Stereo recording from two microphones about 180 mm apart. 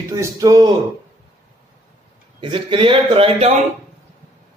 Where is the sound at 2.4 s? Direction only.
30° right (ahead or behind).